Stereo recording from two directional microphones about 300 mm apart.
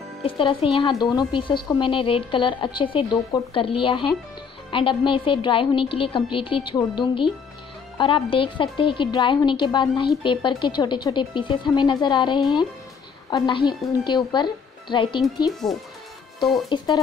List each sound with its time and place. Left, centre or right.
0.2 s a woman's voice: centre
15.6 s speech: centre
16.6 s a woman's voice: centre